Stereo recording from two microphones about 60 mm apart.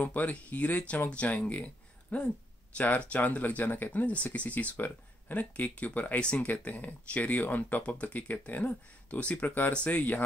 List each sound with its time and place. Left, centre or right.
0.0 s speech: left